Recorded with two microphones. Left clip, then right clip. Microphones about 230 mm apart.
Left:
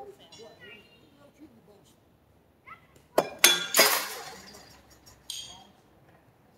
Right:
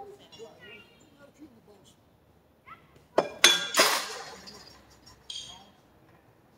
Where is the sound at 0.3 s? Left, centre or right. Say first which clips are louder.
Right 1 dB; left.